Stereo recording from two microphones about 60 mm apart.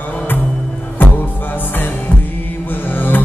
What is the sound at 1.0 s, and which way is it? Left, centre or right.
Music, left.